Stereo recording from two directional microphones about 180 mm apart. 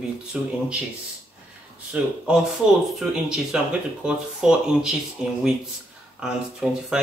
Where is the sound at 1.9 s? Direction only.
5° right (ahead or behind).